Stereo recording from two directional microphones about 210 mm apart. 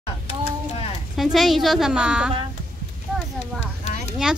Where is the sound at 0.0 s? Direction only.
30° left (ahead or behind).